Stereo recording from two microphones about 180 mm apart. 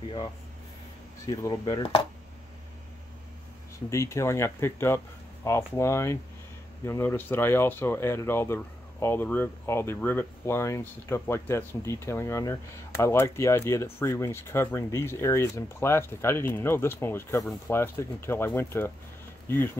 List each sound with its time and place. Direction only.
1.2 s speech: 15° left (ahead or behind)
3.9 s speech: 15° left (ahead or behind)